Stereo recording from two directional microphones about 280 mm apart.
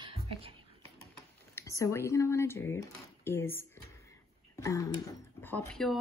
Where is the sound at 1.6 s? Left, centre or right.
Centre.